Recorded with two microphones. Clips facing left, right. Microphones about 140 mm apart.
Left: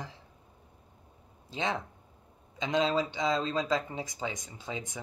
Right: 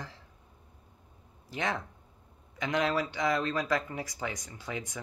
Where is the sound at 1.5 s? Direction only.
20° left (ahead or behind).